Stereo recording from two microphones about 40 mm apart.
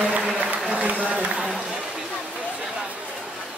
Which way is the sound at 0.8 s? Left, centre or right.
Right.